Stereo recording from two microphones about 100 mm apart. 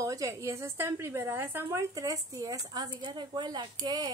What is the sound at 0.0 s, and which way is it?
A woman's voice, 35° right (ahead or behind).